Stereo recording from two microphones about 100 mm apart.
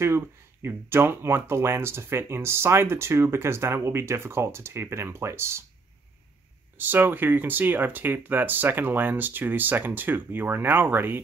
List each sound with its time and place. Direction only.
0.0 s speech: 25° right (ahead or behind)
6.8 s speech: 20° right (ahead or behind)